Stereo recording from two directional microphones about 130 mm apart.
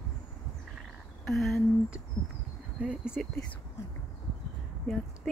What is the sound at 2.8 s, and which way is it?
Speech, 10° right (ahead or behind).